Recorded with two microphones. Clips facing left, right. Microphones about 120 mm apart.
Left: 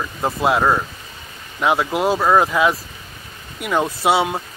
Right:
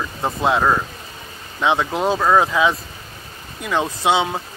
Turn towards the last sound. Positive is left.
turn(degrees=10)  # may be behind; listen again after turning